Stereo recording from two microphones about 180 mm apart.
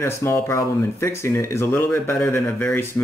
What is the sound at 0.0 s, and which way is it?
Speech, 15° left (ahead or behind).